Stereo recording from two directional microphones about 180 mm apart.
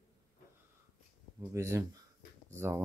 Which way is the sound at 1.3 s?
15° right (ahead or behind).